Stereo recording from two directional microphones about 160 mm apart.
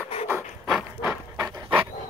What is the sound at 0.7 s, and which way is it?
Pant, 15° right (ahead or behind).